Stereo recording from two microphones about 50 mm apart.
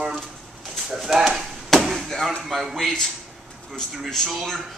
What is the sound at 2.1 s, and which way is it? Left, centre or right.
Speech, centre.